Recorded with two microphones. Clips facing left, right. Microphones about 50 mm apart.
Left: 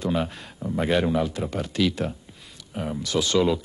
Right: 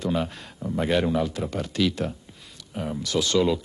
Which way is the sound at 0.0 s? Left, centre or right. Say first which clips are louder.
Left 1 dB; centre.